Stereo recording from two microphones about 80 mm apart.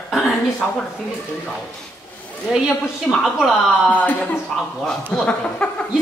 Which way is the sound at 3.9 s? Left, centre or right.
Left.